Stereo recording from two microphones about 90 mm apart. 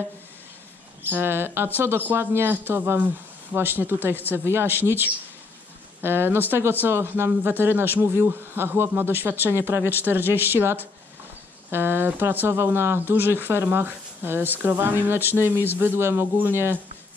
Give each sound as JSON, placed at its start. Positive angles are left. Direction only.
{"t": 1.1, "sound": "speech", "side_deg": -25}
{"t": 6.0, "sound": "speech", "side_deg": -25}